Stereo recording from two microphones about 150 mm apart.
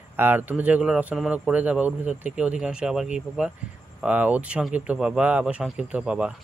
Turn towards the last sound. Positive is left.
turn(degrees=-5)  # may be behind; listen again after turning